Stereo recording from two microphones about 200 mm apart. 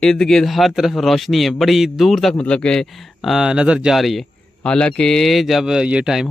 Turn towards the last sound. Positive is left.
turn(degrees=0)  # may be behind; listen again after turning